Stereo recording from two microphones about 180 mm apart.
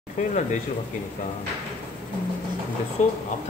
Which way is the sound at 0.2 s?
45° left (ahead or behind).